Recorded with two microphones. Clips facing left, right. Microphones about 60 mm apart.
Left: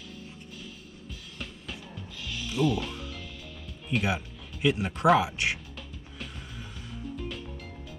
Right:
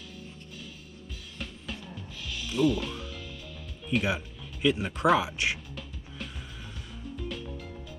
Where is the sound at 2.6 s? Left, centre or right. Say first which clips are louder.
Right 1 dB; left.